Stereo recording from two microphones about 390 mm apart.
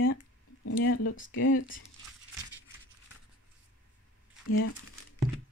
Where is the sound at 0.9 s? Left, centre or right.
Left.